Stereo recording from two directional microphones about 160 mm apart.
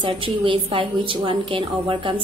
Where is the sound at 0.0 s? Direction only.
35° right (ahead or behind).